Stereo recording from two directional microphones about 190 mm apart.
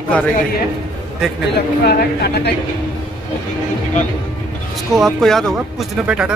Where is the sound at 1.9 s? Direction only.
60° left (ahead or behind).